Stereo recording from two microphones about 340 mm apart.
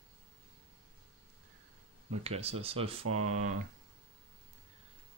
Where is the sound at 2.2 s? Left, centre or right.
Centre.